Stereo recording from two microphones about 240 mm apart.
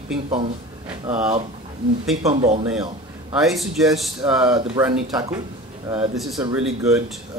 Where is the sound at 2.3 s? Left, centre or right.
Right.